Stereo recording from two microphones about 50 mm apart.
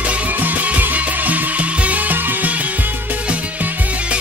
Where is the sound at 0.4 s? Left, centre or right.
Right.